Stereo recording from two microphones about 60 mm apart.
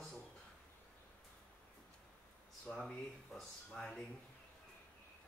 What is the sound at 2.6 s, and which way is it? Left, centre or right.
Speech, centre.